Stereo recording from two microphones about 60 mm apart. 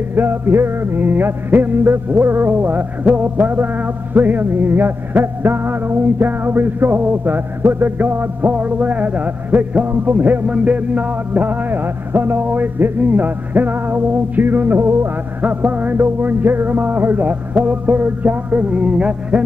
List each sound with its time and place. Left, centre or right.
0.1 s music: right; by 19.4 s centre